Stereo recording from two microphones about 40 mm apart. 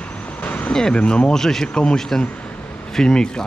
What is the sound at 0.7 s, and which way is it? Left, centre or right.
Speech, centre.